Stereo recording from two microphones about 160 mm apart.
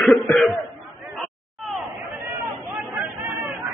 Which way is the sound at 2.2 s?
20° right (ahead or behind).